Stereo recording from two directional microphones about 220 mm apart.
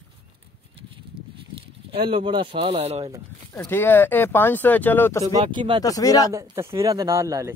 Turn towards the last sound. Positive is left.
turn(degrees=-15)  # may be behind; listen again after turning